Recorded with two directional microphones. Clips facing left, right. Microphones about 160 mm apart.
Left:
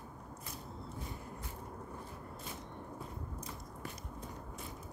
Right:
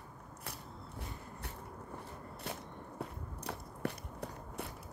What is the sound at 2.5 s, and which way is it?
Biting, 70° right (ahead or behind).